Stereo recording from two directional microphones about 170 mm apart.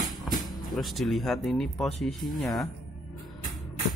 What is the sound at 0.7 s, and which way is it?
Speech, centre (ahead or behind).